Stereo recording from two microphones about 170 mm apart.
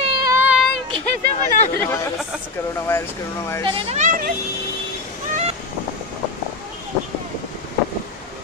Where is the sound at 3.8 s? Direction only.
45° right (ahead or behind).